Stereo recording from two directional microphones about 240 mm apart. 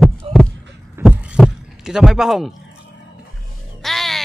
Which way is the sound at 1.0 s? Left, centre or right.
Centre.